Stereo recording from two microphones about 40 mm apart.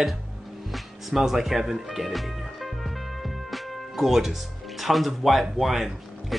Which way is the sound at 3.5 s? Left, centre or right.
Centre.